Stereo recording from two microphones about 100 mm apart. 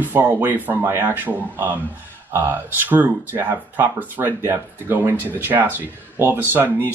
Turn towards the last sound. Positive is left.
turn(degrees=-20)  # may be behind; listen again after turning